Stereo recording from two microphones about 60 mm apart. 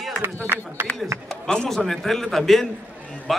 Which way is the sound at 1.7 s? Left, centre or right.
Centre.